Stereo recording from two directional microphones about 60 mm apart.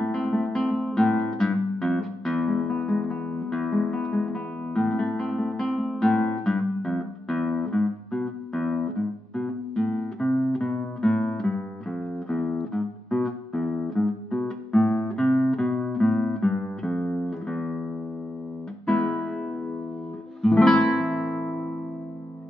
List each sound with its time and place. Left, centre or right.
0.1 s guitar: centre
1.1 s music: left
1.4 s music: centre
7.4 s music: centre
12.3 s music: centre
12.5 s music: centre
15.2 s music: centre
15.9 s guitar: centre
16.8 s music: centre
18.9 s music: centre
20.4 s guitar: centre